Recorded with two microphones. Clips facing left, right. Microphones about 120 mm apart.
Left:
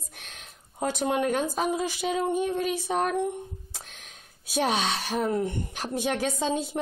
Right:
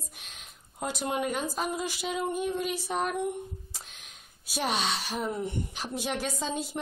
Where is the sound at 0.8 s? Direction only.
55° left (ahead or behind).